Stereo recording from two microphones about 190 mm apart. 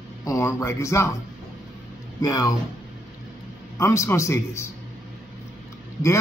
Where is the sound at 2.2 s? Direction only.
20° left (ahead or behind).